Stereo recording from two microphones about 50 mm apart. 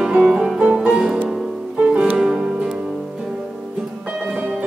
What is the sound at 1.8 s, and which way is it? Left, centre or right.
Music, right.